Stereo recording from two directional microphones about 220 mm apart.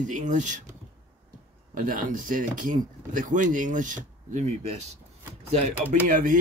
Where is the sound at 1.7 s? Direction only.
40° right (ahead or behind).